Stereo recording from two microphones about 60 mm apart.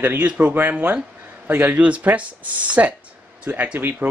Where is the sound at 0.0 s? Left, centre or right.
Right.